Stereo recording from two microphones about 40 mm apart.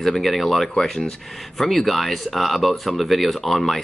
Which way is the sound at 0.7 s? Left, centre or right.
Centre.